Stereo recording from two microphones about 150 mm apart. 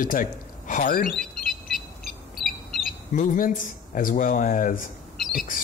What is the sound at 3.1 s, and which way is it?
Speech, 60° left (ahead or behind).